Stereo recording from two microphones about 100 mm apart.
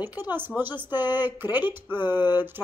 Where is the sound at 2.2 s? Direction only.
45° left (ahead or behind).